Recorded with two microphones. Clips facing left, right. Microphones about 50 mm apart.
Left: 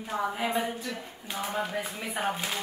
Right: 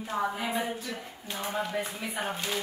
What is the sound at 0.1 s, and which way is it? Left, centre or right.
Speech, left.